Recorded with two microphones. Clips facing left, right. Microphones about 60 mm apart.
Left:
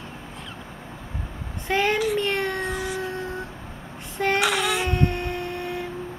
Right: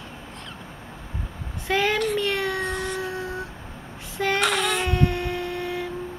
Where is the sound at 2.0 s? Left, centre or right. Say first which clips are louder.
Left 1 dB; centre.